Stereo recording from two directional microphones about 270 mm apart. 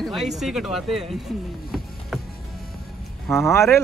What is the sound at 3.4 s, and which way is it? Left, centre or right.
Speech, centre.